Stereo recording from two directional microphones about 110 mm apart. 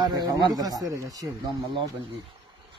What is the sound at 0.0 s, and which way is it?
Speech, 40° right (ahead or behind).